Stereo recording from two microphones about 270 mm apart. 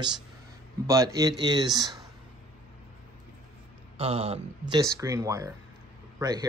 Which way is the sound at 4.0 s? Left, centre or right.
Right.